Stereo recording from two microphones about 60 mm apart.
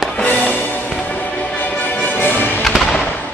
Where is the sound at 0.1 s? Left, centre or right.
Left.